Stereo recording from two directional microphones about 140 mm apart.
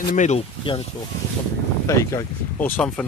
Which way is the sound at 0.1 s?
60° left (ahead or behind).